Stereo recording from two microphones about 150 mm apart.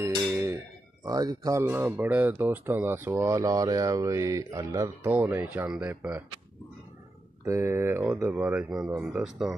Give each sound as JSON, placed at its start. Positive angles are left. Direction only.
{"t": 0.3, "sound": "a sound", "side_deg": -15}
{"t": 1.0, "sound": "speech", "side_deg": -25}
{"t": 7.4, "sound": "speech", "side_deg": -15}